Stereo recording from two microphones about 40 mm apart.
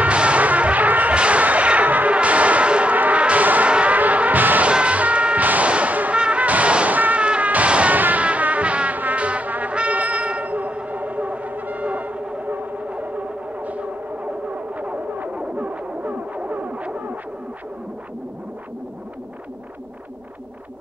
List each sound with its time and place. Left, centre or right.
0.0 s music: right
1.1 s music: right
2.1 s brass instrument: right
3.6 s music: right
4.6 s music: right
5.7 s a sound: right
6.2 s music: right
7.9 s music: right
8.9 s insect: right
10.8 s music: right